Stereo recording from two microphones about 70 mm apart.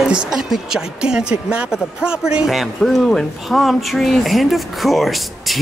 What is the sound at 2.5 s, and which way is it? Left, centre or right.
Speech, centre.